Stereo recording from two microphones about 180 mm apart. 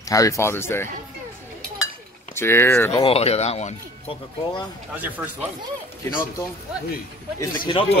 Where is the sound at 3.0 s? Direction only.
35° left (ahead or behind).